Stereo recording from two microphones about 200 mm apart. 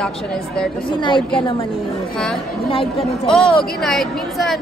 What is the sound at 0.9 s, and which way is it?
Speech, 25° left (ahead or behind).